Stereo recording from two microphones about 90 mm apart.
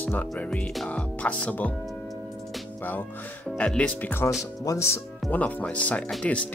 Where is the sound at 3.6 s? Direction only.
10° left (ahead or behind).